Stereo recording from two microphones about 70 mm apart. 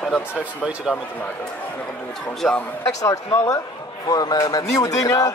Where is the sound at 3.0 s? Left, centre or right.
Left.